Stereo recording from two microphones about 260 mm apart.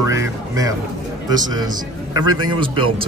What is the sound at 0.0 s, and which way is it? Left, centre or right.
Speech, centre.